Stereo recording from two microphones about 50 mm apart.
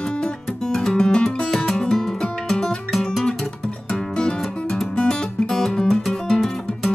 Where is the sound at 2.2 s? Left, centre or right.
Centre.